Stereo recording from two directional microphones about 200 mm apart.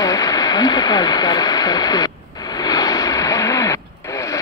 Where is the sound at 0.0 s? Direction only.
20° left (ahead or behind).